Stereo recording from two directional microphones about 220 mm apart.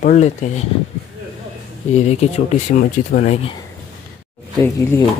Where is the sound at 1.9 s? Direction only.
30° left (ahead or behind).